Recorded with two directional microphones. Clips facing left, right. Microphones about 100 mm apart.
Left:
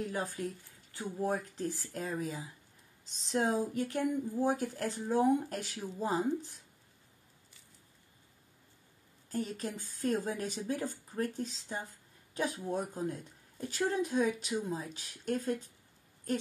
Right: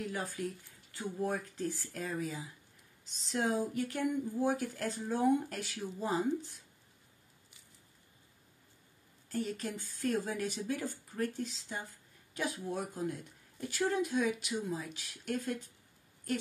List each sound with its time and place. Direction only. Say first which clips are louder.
0.4 s speech: even; 30° left (ahead or behind)
9.3 s speech: even; 30° left (ahead or behind)